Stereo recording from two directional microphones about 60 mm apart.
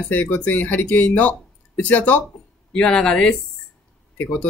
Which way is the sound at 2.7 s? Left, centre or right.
Centre.